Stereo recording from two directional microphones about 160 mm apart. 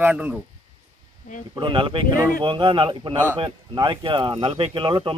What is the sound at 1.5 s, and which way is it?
Speech, 30° right (ahead or behind).